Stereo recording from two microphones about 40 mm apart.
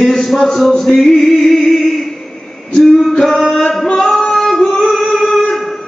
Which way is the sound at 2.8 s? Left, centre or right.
Centre.